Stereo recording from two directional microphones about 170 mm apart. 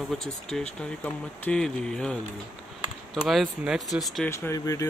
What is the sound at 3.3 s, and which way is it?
Speech, centre (ahead or behind).